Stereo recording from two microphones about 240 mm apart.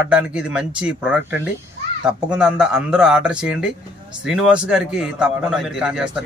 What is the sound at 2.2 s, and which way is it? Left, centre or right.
Speech, centre.